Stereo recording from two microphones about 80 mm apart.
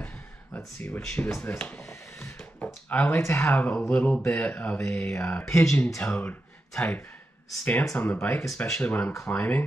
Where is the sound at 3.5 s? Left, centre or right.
Left.